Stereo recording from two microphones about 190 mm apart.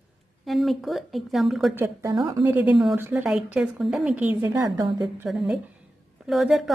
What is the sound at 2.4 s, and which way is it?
A woman's voice, 10° right (ahead or behind).